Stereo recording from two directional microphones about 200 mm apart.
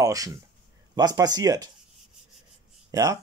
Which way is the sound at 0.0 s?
15° right (ahead or behind).